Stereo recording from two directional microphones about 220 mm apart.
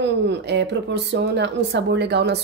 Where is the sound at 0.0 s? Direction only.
50° right (ahead or behind).